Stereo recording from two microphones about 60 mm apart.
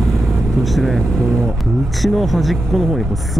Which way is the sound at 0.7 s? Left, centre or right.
Centre.